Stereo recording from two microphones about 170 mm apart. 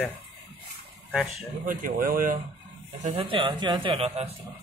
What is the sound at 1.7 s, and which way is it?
Speech, 50° right (ahead or behind).